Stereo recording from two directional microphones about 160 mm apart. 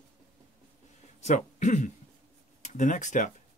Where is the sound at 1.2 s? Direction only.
45° left (ahead or behind).